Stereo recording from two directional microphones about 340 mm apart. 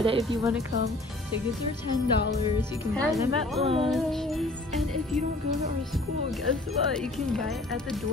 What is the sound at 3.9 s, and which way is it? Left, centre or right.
Music, centre.